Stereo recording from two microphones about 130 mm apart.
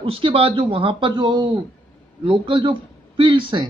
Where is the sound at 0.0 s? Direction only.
45° right (ahead or behind).